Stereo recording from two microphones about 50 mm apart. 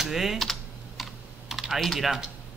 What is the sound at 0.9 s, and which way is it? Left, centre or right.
Computer keyboard, centre.